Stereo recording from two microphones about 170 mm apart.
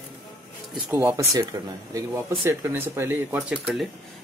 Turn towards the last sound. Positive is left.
turn(degrees=-5)  # may be behind; listen again after turning